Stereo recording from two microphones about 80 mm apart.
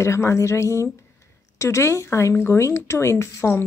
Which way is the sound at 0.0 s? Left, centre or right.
Left.